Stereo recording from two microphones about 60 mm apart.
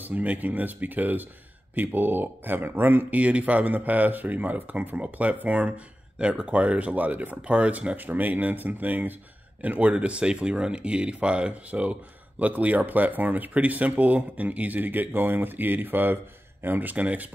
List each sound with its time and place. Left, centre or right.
0.0 s speech: right